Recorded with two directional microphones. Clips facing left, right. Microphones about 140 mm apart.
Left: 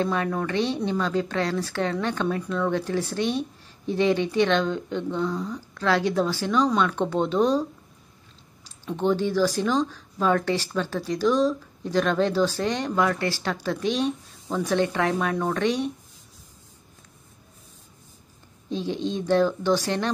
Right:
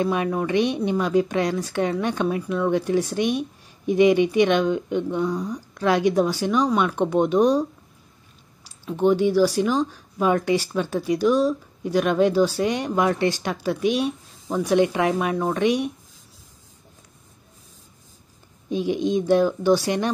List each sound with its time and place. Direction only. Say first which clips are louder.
0.0 s speech: right 3 dB; 15° right (ahead or behind)
8.6 s speech: right 4 dB; 10° right (ahead or behind)
18.7 s speech: right 5 dB; 10° right (ahead or behind)